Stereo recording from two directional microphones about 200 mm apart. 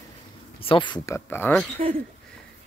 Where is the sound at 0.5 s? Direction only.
25° left (ahead or behind); by 1.7 s 10° left (ahead or behind).